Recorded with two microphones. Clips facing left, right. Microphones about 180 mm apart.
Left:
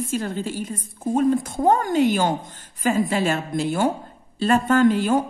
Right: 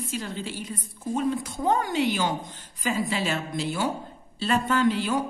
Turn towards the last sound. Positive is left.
turn(degrees=50)  # may be behind; listen again after turning